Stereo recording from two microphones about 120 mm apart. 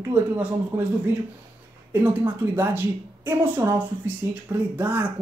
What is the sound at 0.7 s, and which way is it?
Speech, 20° right (ahead or behind).